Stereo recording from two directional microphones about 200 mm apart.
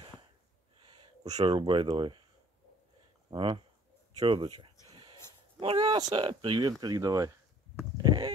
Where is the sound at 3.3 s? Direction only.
25° right (ahead or behind).